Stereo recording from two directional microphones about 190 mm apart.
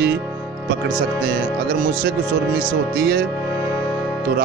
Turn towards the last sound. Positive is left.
turn(degrees=-60)  # may be behind; listen again after turning